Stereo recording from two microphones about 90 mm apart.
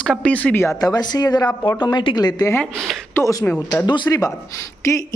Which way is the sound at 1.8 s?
55° left (ahead or behind).